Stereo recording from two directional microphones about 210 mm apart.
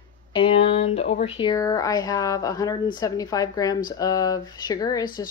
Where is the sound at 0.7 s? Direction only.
30° left (ahead or behind).